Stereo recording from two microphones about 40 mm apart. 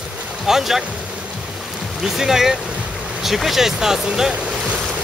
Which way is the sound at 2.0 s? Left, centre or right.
Centre.